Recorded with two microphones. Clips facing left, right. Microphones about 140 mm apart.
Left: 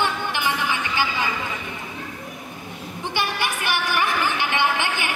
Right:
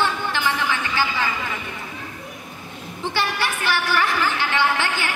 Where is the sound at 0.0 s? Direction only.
15° left (ahead or behind).